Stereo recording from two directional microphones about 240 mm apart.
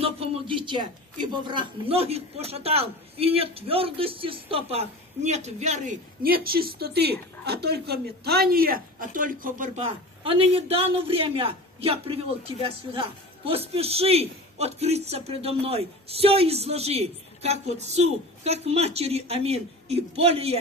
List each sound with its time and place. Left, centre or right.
0.0 s speech: right